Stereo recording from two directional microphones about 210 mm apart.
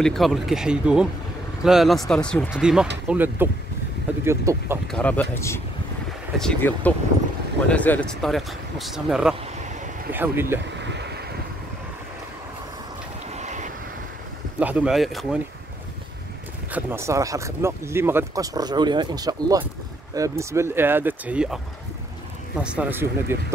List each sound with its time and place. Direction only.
0.0 s speech: centre (ahead or behind)
4.9 s speech: 5° left (ahead or behind); by 10.6 s 10° right (ahead or behind)
10.8 s vehicle: 55° right (ahead or behind)
13.3 s vehicle: 35° right (ahead or behind)
14.6 s speech: 5° right (ahead or behind)
16.7 s speech: 10° right (ahead or behind)
22.6 s speech: 5° right (ahead or behind)